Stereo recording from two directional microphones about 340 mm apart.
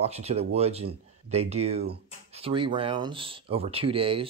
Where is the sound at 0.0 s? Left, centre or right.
Centre.